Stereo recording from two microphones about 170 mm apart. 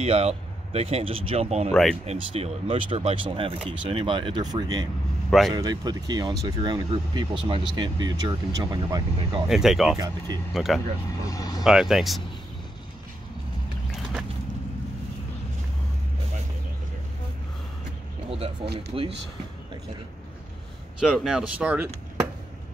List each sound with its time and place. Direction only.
0.0 s speech: 40° right (ahead or behind)
1.7 s speech: centre (ahead or behind)
2.0 s speech: 35° right (ahead or behind)
9.5 s speech: centre (ahead or behind)
9.9 s speech: 20° right (ahead or behind)
10.5 s speech: centre (ahead or behind)
11.2 s speech: 20° left (ahead or behind)
11.6 s speech: centre (ahead or behind)
18.9 s speech: 30° right (ahead or behind)
21.0 s speech: centre (ahead or behind)